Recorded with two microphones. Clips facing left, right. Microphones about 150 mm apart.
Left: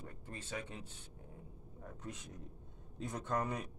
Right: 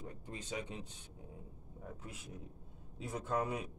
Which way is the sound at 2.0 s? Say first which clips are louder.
Left 1 dB; 5° right (ahead or behind).